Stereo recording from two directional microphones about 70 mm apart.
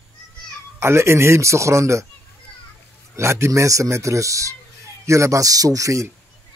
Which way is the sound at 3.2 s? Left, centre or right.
Right.